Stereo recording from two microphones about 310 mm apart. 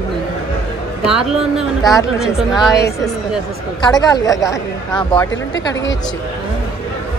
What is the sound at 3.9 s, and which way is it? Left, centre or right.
A woman's voice, centre.